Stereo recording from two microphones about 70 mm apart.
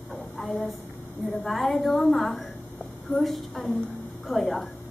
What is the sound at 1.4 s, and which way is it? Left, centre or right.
A woman's voice, centre.